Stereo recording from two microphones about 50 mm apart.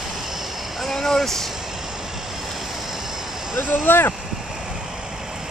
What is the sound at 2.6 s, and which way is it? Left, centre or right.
Vehicle, centre.